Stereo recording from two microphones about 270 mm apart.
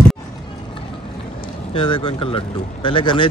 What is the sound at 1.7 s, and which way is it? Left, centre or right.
Speech, centre.